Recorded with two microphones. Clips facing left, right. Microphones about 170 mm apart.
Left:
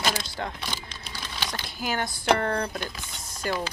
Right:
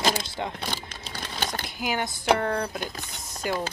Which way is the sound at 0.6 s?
50° right (ahead or behind).